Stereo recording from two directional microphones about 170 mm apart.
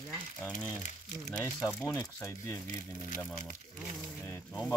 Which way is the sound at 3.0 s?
45° left (ahead or behind).